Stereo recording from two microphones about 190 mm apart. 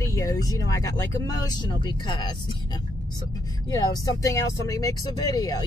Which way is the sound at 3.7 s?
15° left (ahead or behind).